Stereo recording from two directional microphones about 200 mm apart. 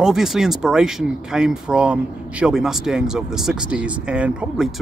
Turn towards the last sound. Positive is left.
turn(degrees=-5)  # may be behind; listen again after turning